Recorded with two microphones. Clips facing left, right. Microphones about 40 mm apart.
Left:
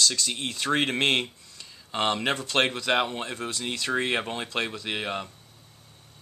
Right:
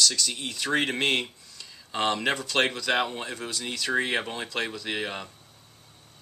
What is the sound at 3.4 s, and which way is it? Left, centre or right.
Speech, left.